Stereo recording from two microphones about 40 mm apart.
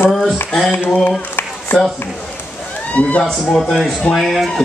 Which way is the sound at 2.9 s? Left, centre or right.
Left.